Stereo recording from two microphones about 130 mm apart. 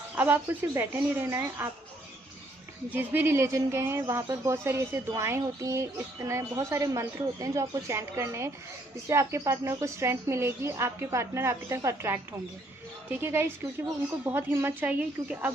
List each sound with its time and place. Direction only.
0.1 s speech: 15° right (ahead or behind)
2.9 s a woman's voice: 15° right (ahead or behind)